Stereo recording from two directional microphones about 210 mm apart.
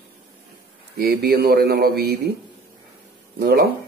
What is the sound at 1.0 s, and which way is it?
A man's voice, 50° right (ahead or behind).